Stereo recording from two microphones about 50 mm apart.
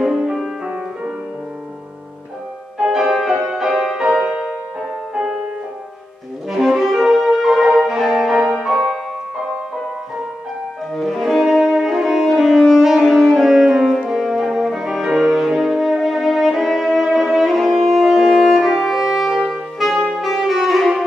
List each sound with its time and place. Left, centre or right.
0.1 s music: centre
0.7 s music: right
2.8 s music: centre
6.5 s music: centre
10.9 s music: centre